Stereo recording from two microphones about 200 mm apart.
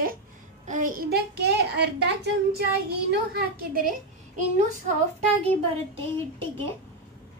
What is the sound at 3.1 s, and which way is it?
Speech, 50° right (ahead or behind).